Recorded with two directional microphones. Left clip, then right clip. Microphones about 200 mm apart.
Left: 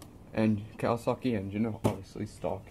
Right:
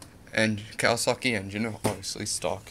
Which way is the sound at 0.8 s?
5° right (ahead or behind).